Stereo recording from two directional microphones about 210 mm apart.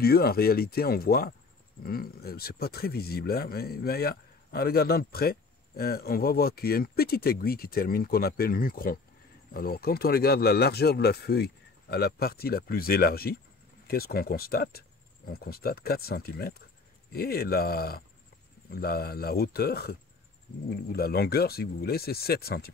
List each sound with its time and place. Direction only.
0.0 s speech: 45° left (ahead or behind)